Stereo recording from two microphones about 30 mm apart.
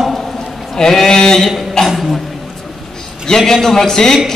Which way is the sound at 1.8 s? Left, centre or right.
Left.